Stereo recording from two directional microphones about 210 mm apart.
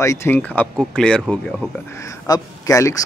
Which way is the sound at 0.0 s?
15° left (ahead or behind).